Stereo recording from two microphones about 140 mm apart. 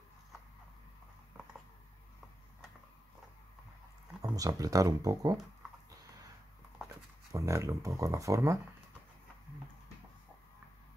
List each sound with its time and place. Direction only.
4.2 s speech: 25° right (ahead or behind)
7.3 s speech: 20° right (ahead or behind)